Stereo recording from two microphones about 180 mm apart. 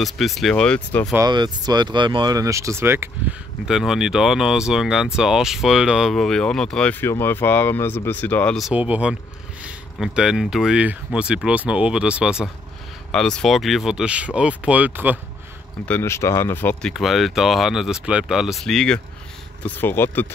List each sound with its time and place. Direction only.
0.0 s speech: centre (ahead or behind)
1.1 s speech: 20° right (ahead or behind)
3.6 s speech: centre (ahead or behind)
15.8 s speech: 10° left (ahead or behind)